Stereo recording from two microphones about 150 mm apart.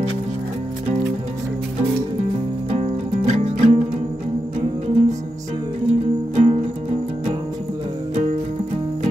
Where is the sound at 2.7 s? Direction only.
50° right (ahead or behind).